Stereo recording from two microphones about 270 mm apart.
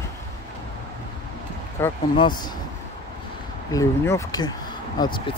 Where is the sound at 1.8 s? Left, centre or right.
Centre.